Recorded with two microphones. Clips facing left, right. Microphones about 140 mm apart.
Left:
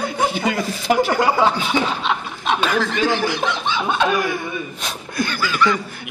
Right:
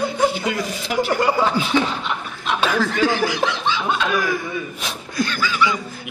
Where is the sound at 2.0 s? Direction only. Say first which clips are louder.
Left 4 dB; 80° left.